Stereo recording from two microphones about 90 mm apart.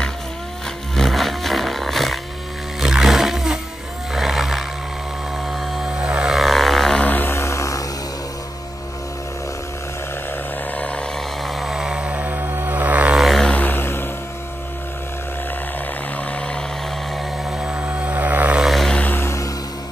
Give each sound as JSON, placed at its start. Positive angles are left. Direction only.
{"t": 0.9, "sound": "roaring cats", "side_deg": 0}
{"t": 2.8, "sound": "music", "side_deg": -5}
{"t": 4.1, "sound": "wild animals", "side_deg": -5}
{"t": 5.5, "sound": "vehicle", "side_deg": -5}
{"t": 7.0, "sound": "a sound", "side_deg": 20}
{"t": 10.7, "sound": "music", "side_deg": 15}
{"t": 11.1, "sound": "music", "side_deg": 0}
{"t": 13.1, "sound": "vehicle", "side_deg": 0}
{"t": 13.5, "sound": "vehicle", "side_deg": 20}
{"t": 16.3, "sound": "a sound", "side_deg": 15}
{"t": 17.1, "sound": "vehicle", "side_deg": -10}
{"t": 18.6, "sound": "vehicle", "side_deg": 0}
{"t": 18.9, "sound": "music", "side_deg": 20}
{"t": 19.2, "sound": "music", "side_deg": 35}